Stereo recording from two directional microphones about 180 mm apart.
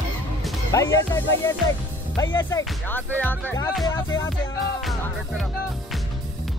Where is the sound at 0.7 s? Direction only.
15° left (ahead or behind).